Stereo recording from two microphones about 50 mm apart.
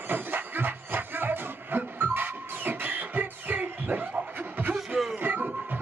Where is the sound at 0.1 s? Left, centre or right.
Right.